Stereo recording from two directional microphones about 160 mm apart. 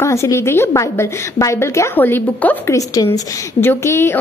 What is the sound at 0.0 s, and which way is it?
A woman's voice, 20° left (ahead or behind).